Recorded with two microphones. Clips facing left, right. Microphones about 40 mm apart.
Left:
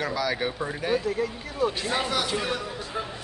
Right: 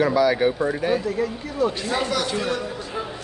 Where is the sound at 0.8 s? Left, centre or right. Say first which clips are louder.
Left 1 dB; centre.